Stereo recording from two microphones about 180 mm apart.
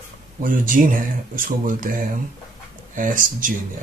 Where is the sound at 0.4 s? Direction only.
50° right (ahead or behind).